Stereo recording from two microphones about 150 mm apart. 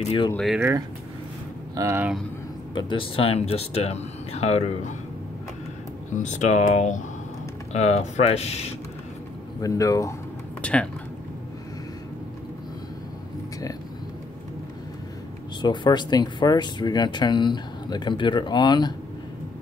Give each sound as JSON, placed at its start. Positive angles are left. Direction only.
{"t": 0.0, "sound": "speech", "side_deg": 40}
{"t": 0.6, "sound": "speech", "side_deg": -20}
{"t": 2.7, "sound": "speech", "side_deg": 30}
{"t": 6.1, "sound": "speech", "side_deg": 55}
{"t": 9.6, "sound": "speech", "side_deg": 20}
{"t": 10.6, "sound": "speech", "side_deg": 5}
{"t": 15.6, "sound": "speech", "side_deg": 30}